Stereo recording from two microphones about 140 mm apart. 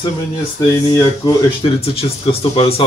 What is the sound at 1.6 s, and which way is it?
Speech, 40° left (ahead or behind).